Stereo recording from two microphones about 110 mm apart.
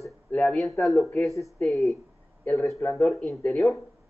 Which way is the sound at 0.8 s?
Centre (ahead or behind).